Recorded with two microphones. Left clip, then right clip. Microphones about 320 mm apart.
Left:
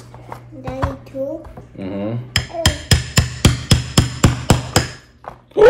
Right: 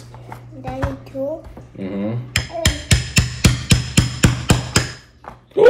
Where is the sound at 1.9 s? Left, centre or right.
Centre.